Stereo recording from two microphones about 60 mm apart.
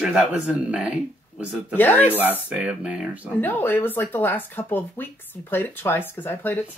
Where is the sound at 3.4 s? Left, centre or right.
Left.